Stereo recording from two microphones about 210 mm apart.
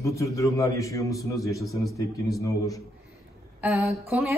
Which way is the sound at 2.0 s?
15° left (ahead or behind).